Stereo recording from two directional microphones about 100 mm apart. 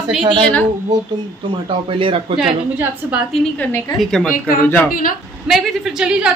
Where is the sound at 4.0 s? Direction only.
5° left (ahead or behind).